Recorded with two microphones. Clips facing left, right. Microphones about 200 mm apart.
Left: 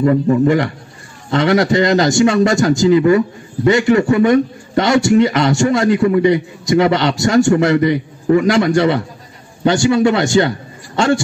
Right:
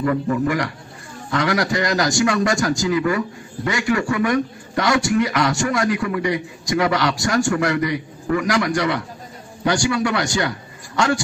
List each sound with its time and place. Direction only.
0.0 s a man's voice: 25° left (ahead or behind)